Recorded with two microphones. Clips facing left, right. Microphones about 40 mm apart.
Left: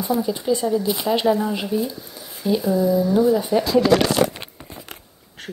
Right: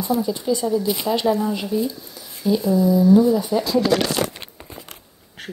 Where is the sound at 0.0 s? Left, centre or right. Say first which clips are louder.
Even; centre.